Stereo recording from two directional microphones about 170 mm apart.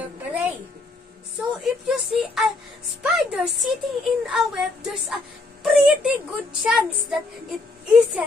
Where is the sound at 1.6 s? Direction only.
Centre (ahead or behind).